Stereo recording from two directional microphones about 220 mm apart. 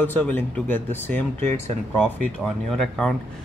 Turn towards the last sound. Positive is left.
turn(degrees=5)  # may be behind; listen again after turning